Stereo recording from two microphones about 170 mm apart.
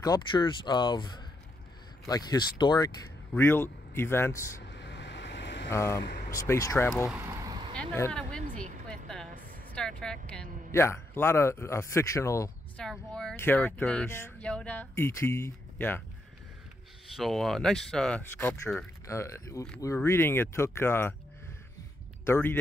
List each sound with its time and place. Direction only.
0.0 s speech: 25° left (ahead or behind)
4.6 s vehicle: 90° left
5.7 s speech: 15° left (ahead or behind)
7.2 s vehicle: 20° right (ahead or behind)
7.7 s vehicle: 10° left (ahead or behind)
8.8 s a sound: 5° left (ahead or behind)
9.8 s a woman's voice: 5° left (ahead or behind)
10.7 s speech: 15° left (ahead or behind)
12.7 s speech: 5° left (ahead or behind)
17.1 s speech: centre (ahead or behind)
22.2 s speech: 15° left (ahead or behind)